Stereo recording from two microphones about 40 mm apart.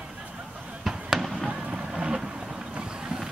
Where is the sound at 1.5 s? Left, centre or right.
Right.